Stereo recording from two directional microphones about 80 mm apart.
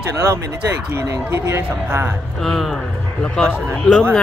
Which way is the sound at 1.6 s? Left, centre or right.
Right.